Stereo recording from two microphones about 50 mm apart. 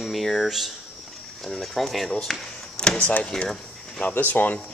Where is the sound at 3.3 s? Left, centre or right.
Centre.